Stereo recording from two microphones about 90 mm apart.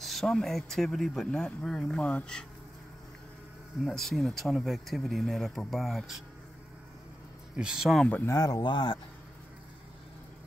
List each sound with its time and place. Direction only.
0.0 s speech: centre (ahead or behind)
3.8 s speech: 5° left (ahead or behind)
7.5 s speech: 10° right (ahead or behind)
8.3 s speech: 40° left (ahead or behind)
8.6 s speech: 65° left (ahead or behind)